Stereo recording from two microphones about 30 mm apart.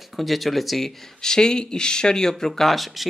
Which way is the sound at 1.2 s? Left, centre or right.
Left.